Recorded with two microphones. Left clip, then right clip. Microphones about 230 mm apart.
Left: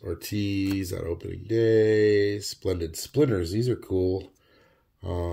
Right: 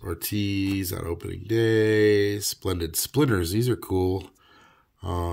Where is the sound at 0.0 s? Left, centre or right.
Centre.